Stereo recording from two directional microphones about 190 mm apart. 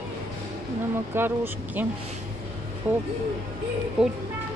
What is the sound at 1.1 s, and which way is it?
Speech, 10° right (ahead or behind).